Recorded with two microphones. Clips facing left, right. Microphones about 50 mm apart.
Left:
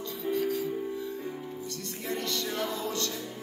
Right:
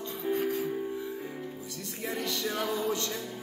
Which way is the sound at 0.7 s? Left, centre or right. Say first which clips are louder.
Even; right.